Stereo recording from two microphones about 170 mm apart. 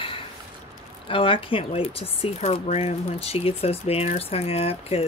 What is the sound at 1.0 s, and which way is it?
Speech, 30° left (ahead or behind).